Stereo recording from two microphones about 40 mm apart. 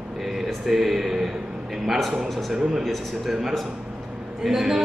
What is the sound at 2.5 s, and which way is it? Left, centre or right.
Speech, centre.